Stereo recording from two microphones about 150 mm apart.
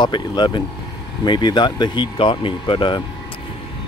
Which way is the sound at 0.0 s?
30° left (ahead or behind).